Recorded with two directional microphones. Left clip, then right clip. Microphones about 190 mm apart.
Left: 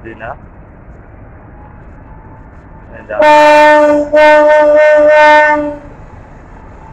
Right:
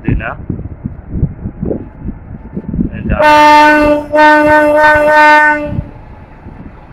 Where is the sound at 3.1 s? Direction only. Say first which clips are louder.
Even; 25° left (ahead or behind).